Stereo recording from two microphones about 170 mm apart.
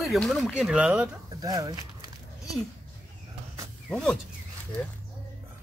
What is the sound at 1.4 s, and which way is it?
Speech, 20° right (ahead or behind).